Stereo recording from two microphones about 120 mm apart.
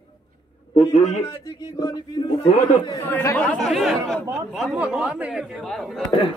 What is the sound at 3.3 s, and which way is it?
Speech, 10° left (ahead or behind).